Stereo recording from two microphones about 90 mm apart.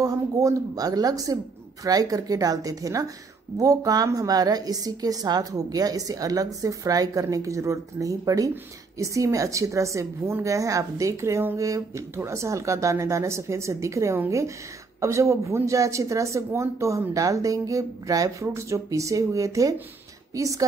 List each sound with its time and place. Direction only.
0.0 s a woman's voice: 40° right (ahead or behind)